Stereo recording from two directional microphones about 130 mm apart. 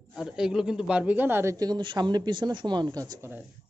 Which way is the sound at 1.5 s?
35° right (ahead or behind).